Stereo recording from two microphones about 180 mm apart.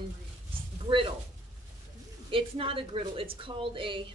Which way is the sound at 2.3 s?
30° right (ahead or behind).